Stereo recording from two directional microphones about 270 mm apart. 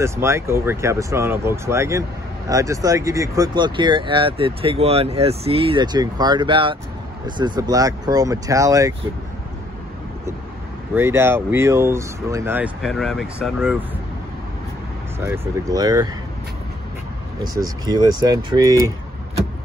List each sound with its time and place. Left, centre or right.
0.0 s speech: centre
11.0 s speech: centre
15.1 s speech: centre
17.4 s speech: centre